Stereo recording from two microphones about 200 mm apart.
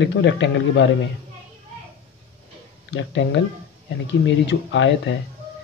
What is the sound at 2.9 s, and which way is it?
Speech, 65° left (ahead or behind).